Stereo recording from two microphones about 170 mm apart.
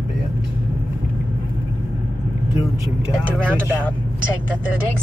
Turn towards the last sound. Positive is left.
turn(degrees=-10)  # may be behind; listen again after turning